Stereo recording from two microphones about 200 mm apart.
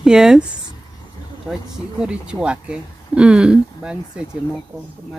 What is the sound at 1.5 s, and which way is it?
Speech, 5° right (ahead or behind).